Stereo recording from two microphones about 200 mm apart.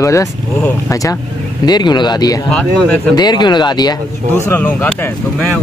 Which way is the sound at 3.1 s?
20° left (ahead or behind).